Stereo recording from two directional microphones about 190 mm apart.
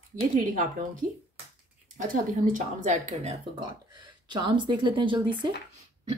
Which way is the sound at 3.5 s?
25° right (ahead or behind).